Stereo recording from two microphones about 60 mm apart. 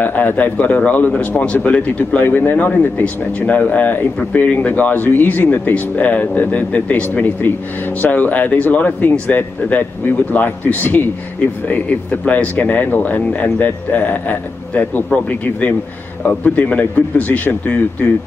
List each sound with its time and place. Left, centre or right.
0.0 s speech: left